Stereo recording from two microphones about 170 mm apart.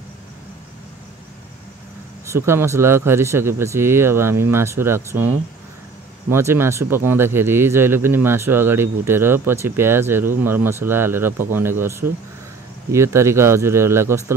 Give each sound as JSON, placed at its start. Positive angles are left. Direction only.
{"t": 2.2, "sound": "speech", "side_deg": -15}
{"t": 6.3, "sound": "speech", "side_deg": -15}